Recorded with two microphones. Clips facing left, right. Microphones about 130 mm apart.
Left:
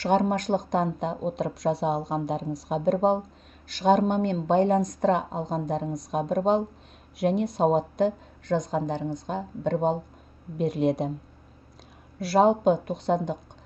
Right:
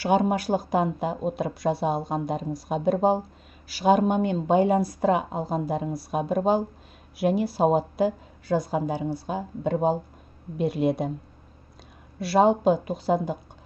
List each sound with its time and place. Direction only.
0.0 s a woman's voice: 5° right (ahead or behind)
12.2 s speech: centre (ahead or behind)